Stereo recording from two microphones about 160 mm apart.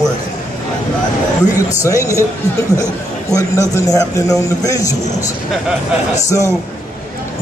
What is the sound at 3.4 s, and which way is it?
A man's voice, 20° left (ahead or behind).